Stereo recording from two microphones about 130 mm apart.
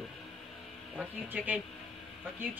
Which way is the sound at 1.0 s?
10° right (ahead or behind).